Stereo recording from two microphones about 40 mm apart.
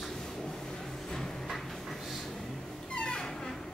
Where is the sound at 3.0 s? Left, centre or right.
Centre.